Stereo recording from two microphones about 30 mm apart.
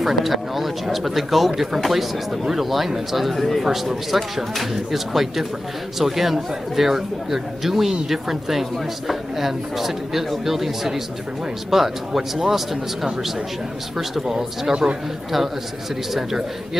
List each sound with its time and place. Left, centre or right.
0.0 s speech: centre
14.7 s speech: right
16.1 s speech: centre